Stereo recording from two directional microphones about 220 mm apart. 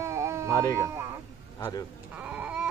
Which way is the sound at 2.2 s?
5° right (ahead or behind).